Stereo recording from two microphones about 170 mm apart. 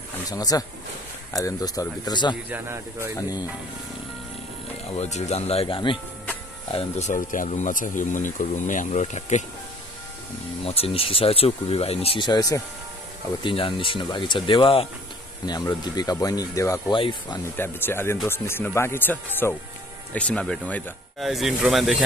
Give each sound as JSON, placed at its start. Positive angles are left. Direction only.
{"t": 0.3, "sound": "speech", "side_deg": 20}
{"t": 2.5, "sound": "speech", "side_deg": -15}
{"t": 3.2, "sound": "speech", "side_deg": 20}
{"t": 4.9, "sound": "speech", "side_deg": 40}
{"t": 10.6, "sound": "speech", "side_deg": 35}
{"t": 17.6, "sound": "speech", "side_deg": 10}